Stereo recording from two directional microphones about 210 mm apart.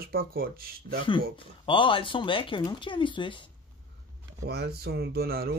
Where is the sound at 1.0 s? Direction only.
25° left (ahead or behind).